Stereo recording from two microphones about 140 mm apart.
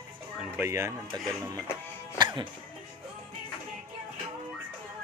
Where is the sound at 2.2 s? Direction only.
35° right (ahead or behind).